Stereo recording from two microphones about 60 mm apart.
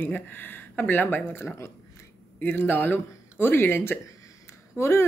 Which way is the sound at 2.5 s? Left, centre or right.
Left.